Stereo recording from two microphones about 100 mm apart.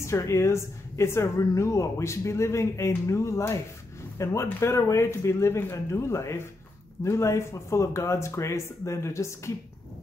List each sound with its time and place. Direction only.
0.0 s a woman's voice: 30° left (ahead or behind)